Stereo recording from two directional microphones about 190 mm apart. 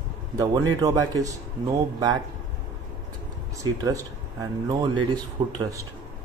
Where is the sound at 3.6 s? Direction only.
20° right (ahead or behind).